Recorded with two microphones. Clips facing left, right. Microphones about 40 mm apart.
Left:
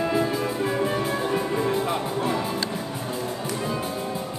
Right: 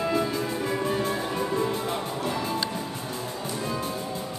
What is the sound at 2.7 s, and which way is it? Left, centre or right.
Music, centre.